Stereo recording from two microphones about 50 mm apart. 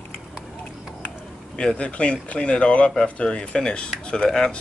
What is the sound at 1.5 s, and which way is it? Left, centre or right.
Speech, left.